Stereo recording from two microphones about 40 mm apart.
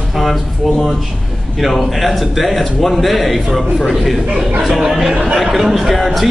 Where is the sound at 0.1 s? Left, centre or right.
Centre.